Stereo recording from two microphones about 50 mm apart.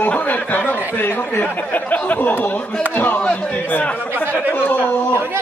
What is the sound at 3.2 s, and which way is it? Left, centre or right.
Speech, left.